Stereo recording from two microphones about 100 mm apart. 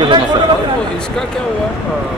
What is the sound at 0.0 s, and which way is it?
Chatter, 55° right (ahead or behind).